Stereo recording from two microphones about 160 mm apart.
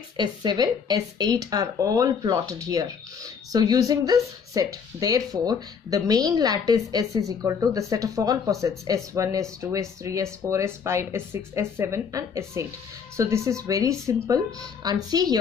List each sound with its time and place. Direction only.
0.2 s a woman's voice: 25° right (ahead or behind)